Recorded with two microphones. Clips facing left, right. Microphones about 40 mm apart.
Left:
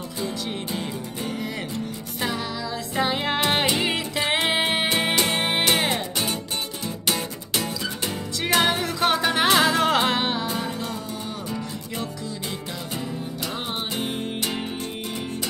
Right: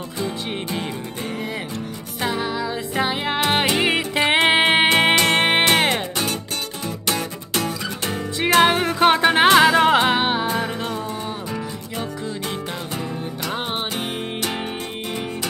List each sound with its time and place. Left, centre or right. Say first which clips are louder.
0.2 s music: right 3 dB; right
2.2 s music: right 5 dB; right
3.1 s music: right 1 dB; centre
3.7 s music: right 5 dB; right
7.1 s guitar: right 2 dB; right
8.5 s music: right 6 dB; right
9.9 s music: right 4 dB; centre; by 10.9 s right
13.9 s music: right 1 dB; right